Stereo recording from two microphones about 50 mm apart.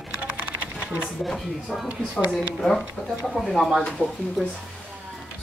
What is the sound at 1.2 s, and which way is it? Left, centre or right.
Speech, centre.